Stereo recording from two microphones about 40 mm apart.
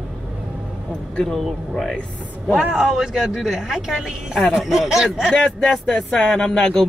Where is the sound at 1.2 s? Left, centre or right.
Centre.